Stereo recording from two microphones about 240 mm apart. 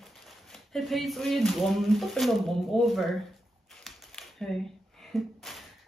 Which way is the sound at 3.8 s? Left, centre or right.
Centre.